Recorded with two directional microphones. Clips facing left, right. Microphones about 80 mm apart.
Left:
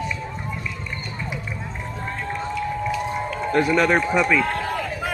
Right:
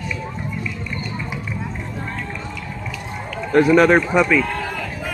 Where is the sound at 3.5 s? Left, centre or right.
Right.